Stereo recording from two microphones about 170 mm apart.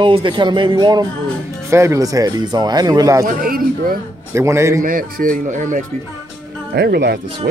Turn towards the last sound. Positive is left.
turn(degrees=-70)  # may be behind; listen again after turning